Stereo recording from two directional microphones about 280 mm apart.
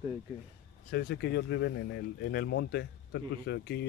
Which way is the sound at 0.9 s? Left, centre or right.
Left.